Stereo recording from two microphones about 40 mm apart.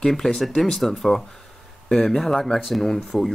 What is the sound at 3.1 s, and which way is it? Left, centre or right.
Speech, left.